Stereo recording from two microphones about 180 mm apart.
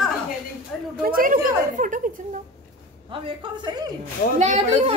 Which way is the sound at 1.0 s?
50° right (ahead or behind).